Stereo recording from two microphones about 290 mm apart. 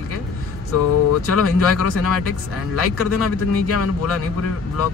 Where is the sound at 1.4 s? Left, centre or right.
Left.